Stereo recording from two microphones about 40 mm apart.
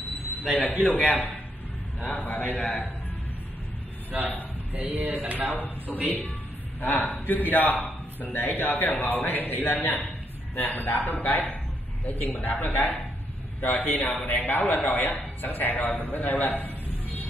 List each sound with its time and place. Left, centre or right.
0.6 s a man's voice: left
2.5 s a man's voice: left
4.1 s a man's voice: right
4.7 s a sound: right
5.9 s a man's voice: left